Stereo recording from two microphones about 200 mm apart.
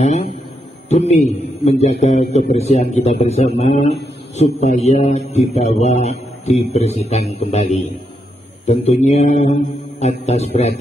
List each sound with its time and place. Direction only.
0.8 s a man's voice: 35° left (ahead or behind)